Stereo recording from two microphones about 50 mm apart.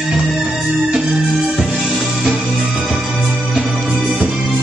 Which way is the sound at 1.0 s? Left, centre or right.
Centre.